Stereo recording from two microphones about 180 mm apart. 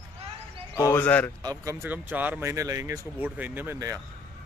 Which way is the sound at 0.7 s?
15° left (ahead or behind).